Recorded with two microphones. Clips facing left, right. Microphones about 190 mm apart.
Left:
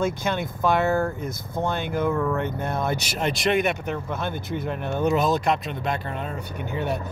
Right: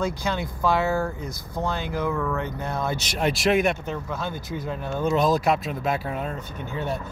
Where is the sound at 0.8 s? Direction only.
10° right (ahead or behind).